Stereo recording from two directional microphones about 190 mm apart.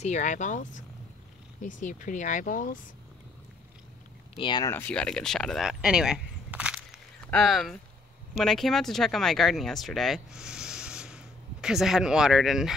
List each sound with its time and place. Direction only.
0.0 s speech: 40° left (ahead or behind)
4.4 s speech: 25° left (ahead or behind)
4.7 s speech: 5° left (ahead or behind)